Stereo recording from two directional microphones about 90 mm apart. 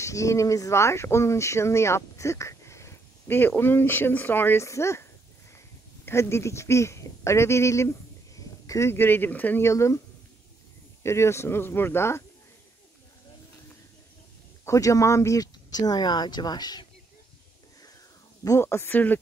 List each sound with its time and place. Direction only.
0.0 s speech: 35° left (ahead or behind)
6.0 s speech: 30° left (ahead or behind)
14.6 s speech: 35° left (ahead or behind)
18.4 s speech: 30° left (ahead or behind)